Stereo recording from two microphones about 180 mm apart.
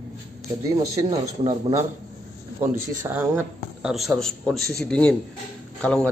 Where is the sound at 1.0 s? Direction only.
20° right (ahead or behind).